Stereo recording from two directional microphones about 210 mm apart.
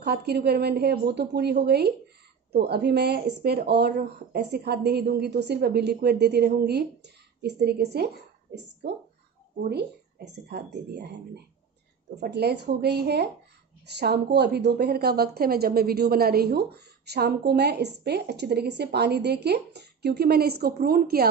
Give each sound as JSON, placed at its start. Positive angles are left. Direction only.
{"t": 0.0, "sound": "a woman's voice", "side_deg": -50}